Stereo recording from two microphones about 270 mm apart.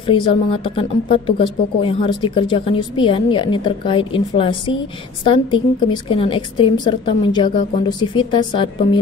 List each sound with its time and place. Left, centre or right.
0.0 s a woman's voice: centre